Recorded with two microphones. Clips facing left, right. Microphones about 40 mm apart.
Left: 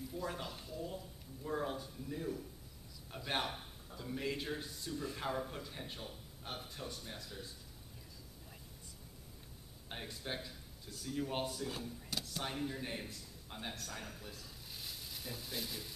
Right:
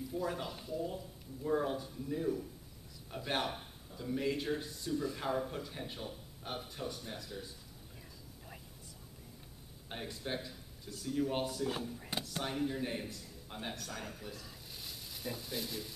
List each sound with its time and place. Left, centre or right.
0.1 s speech: centre
9.8 s speech: centre
12.0 s a sound: right
12.4 s a man's voice: centre